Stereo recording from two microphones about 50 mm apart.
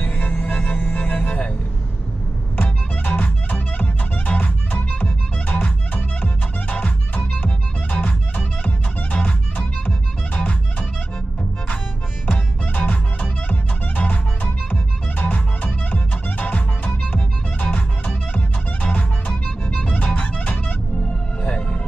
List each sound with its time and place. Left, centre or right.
0.0 s music: left
2.5 s music: left
12.3 s music: left